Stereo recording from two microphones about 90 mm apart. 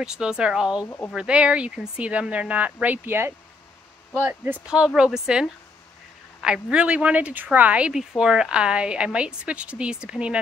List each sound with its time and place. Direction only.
0.0 s a woman's voice: 10° right (ahead or behind)
0.8 s speech: 20° left (ahead or behind)
1.1 s a woman's voice: 10° right (ahead or behind)
4.6 s a woman's voice: 10° right (ahead or behind)